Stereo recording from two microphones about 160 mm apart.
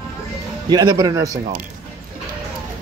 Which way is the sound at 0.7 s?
20° right (ahead or behind).